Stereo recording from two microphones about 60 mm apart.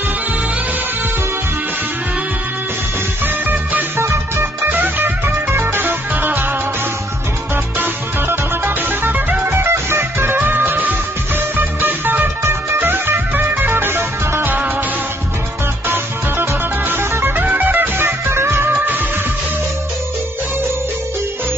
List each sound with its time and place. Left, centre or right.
4.0 s music: right
4.6 s music: right
7.8 s music: right
9.5 s music: right
16.9 s music: right
18.2 s music: right